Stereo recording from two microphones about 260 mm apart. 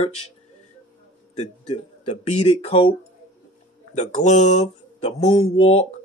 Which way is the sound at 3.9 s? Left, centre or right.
Left.